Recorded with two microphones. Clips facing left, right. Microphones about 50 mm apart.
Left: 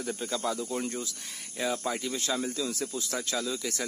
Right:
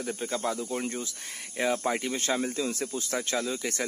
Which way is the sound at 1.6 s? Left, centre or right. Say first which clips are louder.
Right 3 dB; right.